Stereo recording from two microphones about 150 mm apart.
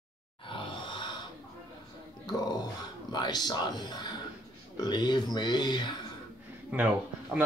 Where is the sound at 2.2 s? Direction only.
25° left (ahead or behind).